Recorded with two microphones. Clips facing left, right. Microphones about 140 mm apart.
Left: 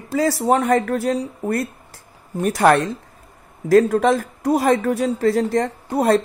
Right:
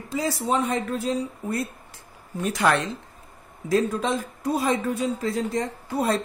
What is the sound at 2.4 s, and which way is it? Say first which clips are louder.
Speech: left 7 dB; 50° left (ahead or behind).